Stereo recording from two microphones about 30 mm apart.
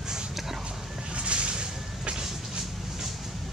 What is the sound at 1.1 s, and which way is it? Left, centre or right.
Vehicle, right.